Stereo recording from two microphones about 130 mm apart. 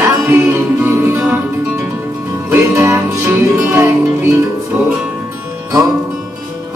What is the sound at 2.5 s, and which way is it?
Music, 15° right (ahead or behind).